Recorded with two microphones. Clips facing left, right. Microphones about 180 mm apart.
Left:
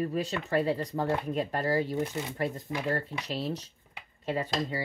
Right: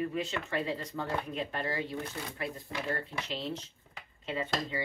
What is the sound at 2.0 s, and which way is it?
Speech, 20° left (ahead or behind).